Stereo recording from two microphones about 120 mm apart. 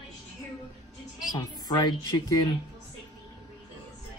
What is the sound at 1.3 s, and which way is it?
Speech, 35° left (ahead or behind).